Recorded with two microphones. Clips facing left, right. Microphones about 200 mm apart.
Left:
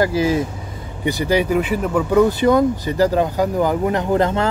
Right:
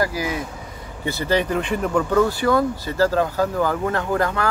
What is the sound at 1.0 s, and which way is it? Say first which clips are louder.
Speech: left 3 dB; 15° left (ahead or behind).